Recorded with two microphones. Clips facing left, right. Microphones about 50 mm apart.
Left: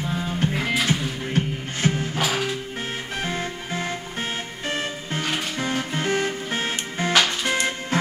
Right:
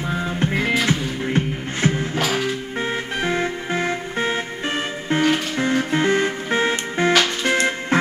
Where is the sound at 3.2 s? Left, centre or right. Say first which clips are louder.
Right 6 dB; right.